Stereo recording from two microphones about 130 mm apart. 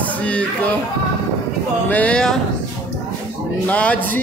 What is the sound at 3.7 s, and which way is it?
Speech, 10° left (ahead or behind).